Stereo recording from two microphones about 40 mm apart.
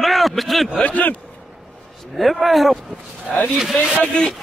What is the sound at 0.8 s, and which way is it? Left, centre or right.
Speech, left.